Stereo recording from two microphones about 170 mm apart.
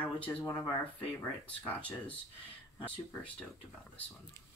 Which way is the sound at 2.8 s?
10° left (ahead or behind).